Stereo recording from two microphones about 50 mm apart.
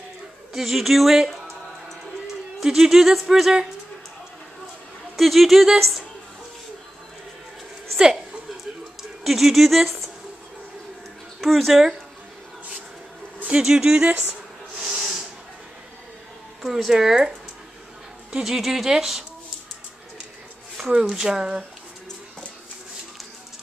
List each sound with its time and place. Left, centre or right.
0.5 s speech: centre
2.6 s speech: centre
5.1 s speech: centre
8.0 s a sound: centre
9.2 s speech: centre
11.4 s speech: centre
13.6 s speech: centre
14.8 s snort: centre
16.6 s speech: centre
18.4 s speech: centre
20.9 s speech: centre